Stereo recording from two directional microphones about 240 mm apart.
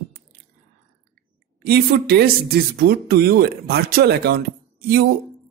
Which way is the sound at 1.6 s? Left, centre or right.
Right.